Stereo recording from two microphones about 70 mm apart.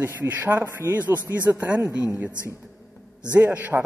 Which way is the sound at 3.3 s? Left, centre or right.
Right.